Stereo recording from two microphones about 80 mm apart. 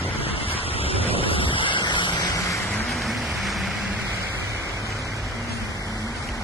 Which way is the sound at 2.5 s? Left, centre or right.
Centre.